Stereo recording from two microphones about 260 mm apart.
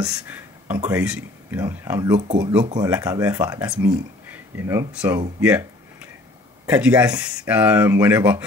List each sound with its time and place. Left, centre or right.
0.1 s speech: centre
2.1 s speech: right
2.4 s speech: centre